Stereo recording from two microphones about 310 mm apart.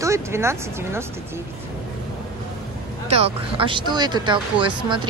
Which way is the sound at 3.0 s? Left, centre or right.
Centre.